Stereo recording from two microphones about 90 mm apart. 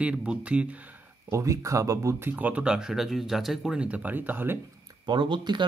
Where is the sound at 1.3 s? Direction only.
35° right (ahead or behind).